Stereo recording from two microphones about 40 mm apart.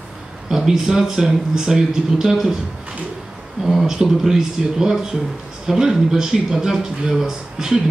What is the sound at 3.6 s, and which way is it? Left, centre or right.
Speech, centre.